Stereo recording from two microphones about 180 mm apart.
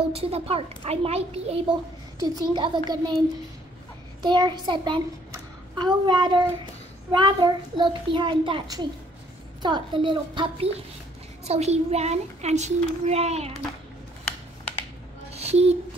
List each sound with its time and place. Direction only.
0.1 s a child's voice: 35° right (ahead or behind)
2.1 s child singing: 20° right (ahead or behind)
4.2 s child singing: 25° right (ahead or behind)
11.4 s a child's voice: 35° right (ahead or behind)
15.3 s a sound: 35° right (ahead or behind)